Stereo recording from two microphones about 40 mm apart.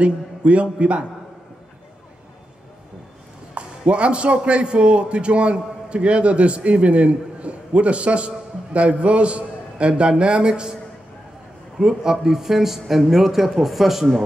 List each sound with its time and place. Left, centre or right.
0.0 s a man's voice: right
3.5 s a man's voice: right
11.8 s speech: centre